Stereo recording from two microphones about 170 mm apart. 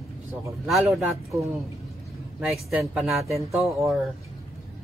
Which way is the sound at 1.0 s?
15° right (ahead or behind).